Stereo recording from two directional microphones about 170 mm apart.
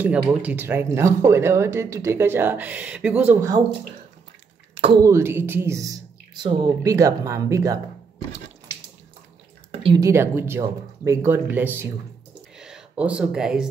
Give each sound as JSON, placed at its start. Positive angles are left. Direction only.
{"t": 0.0, "sound": "speech", "side_deg": -10}
{"t": 4.7, "sound": "speech", "side_deg": -35}
{"t": 5.0, "sound": "speech", "side_deg": -15}
{"t": 9.9, "sound": "speech", "side_deg": -15}
{"t": 12.5, "sound": "a sound", "side_deg": -5}